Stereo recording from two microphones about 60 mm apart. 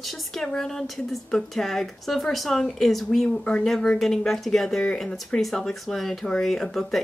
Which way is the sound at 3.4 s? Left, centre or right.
Centre.